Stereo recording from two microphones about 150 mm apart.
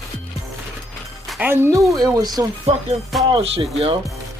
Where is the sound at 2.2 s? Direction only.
25° right (ahead or behind).